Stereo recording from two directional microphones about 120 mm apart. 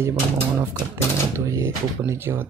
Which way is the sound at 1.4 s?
25° right (ahead or behind).